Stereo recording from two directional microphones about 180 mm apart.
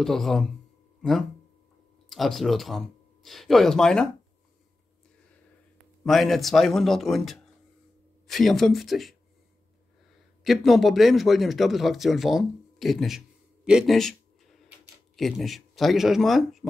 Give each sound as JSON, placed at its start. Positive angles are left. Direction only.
{"t": 0.0, "sound": "speech", "side_deg": 0}
{"t": 6.0, "sound": "speech", "side_deg": 0}
{"t": 10.4, "sound": "speech", "side_deg": 0}
{"t": 13.7, "sound": "a sound", "side_deg": 0}
{"t": 15.1, "sound": "speech", "side_deg": 0}